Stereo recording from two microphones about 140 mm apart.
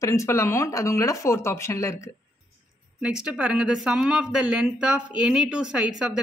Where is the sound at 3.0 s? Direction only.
5° right (ahead or behind).